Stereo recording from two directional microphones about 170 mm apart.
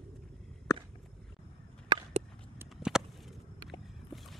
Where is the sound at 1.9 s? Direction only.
25° right (ahead or behind).